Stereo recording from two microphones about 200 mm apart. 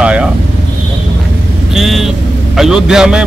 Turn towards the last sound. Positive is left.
turn(degrees=-5)  # may be behind; listen again after turning